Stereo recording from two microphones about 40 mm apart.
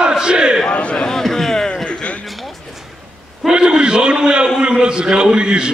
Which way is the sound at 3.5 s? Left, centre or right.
Right.